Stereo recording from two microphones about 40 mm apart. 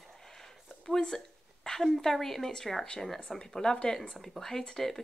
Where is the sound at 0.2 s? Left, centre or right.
Centre.